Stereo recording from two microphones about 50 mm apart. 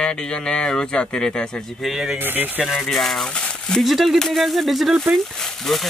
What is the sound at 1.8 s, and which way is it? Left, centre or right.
Speech, centre.